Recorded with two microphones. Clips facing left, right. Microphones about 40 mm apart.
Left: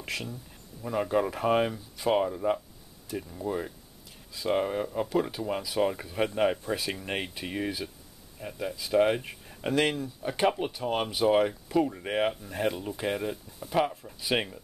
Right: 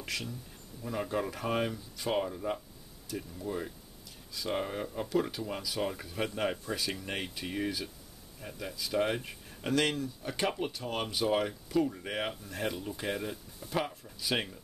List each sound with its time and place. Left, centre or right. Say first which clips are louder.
0.0 s speech: left 3 dB; left